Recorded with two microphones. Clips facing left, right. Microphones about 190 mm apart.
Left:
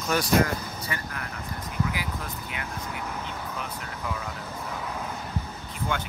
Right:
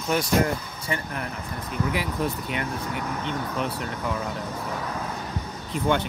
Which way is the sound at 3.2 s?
80° right.